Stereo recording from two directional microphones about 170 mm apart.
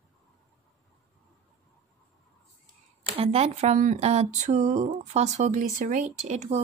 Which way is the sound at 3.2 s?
40° right (ahead or behind).